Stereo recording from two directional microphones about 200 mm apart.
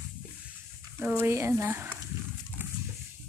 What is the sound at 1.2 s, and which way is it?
Speech, 10° right (ahead or behind).